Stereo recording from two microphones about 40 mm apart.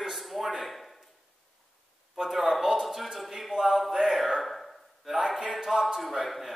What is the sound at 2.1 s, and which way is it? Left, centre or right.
A man's voice, centre.